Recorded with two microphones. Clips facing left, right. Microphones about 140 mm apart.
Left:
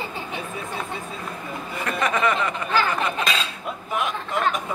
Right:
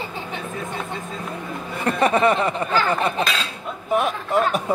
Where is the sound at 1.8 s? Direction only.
30° right (ahead or behind).